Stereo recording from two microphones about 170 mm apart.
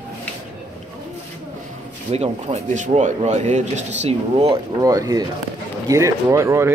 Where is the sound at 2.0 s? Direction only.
35° right (ahead or behind).